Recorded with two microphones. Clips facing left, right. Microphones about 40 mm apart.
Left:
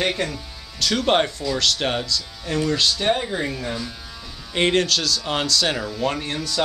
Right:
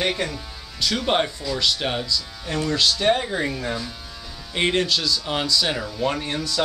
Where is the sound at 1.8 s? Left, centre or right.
Centre.